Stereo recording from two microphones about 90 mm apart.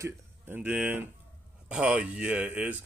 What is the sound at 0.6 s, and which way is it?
Speech, 20° right (ahead or behind).